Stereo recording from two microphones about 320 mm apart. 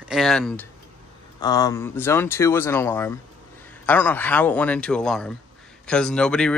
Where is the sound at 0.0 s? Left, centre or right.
Centre.